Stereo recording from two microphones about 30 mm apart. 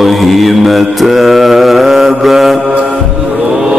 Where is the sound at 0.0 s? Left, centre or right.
Centre.